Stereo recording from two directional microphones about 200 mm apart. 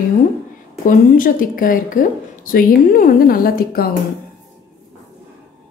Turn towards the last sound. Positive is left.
turn(degrees=50)  # may be behind; listen again after turning